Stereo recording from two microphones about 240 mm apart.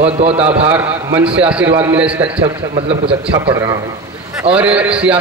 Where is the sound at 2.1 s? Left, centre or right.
Right.